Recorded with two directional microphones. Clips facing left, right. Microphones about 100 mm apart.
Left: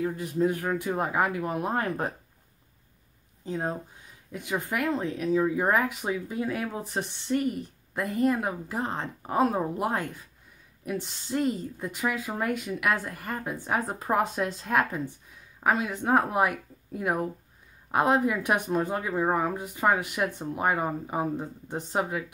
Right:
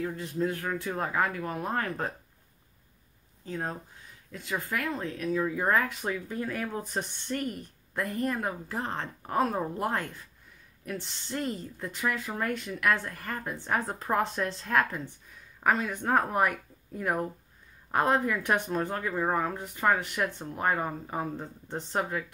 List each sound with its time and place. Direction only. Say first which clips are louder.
0.0 s speech: left 4 dB; 15° left (ahead or behind)
3.4 s speech: left 4 dB; 20° left (ahead or behind)